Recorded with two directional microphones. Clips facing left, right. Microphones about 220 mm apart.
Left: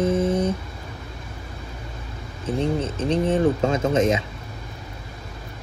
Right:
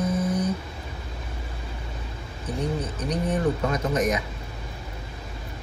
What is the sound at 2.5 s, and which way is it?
Speech, 25° left (ahead or behind).